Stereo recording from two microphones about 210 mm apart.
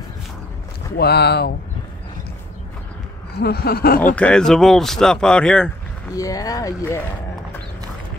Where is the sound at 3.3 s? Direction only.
50° left (ahead or behind).